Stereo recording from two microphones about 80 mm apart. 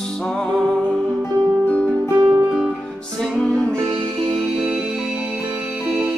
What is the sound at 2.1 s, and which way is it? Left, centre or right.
Music, right.